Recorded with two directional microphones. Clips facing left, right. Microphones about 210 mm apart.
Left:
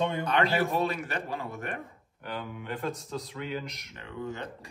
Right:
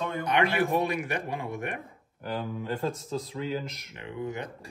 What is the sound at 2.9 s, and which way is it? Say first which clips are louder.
Speech: right 3 dB; centre (ahead or behind).